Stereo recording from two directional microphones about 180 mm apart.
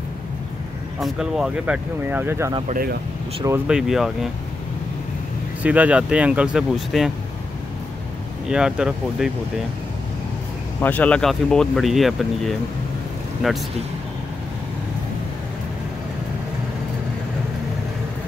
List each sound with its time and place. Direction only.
0.9 s speech: centre (ahead or behind)
2.7 s speech: 55° right (ahead or behind)
3.4 s speech: 10° right (ahead or behind)
5.6 s speech: 10° right (ahead or behind)
8.5 s speech: 5° right (ahead or behind)
10.8 s speech: 10° left (ahead or behind)